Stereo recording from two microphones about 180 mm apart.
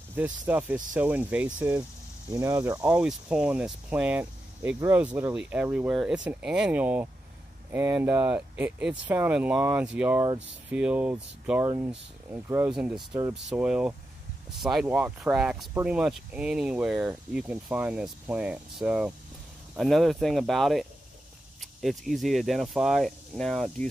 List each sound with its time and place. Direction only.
0.1 s speech: 10° right (ahead or behind)
2.8 s speech: 5° right (ahead or behind)
11.6 s speech: 20° right (ahead or behind); by 23.9 s centre (ahead or behind)